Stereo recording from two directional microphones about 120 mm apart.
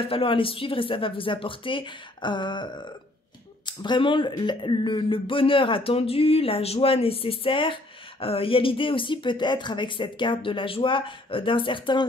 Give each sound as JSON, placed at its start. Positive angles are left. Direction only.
{"t": 0.0, "sound": "speech", "side_deg": 50}